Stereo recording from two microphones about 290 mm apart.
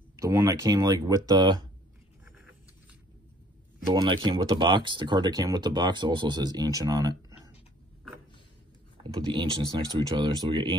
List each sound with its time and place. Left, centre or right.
0.1 s speech: centre
2.2 s vehicle: centre
3.9 s speech: centre
9.1 s speech: centre